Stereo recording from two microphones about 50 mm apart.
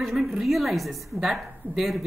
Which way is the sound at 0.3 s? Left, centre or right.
Centre.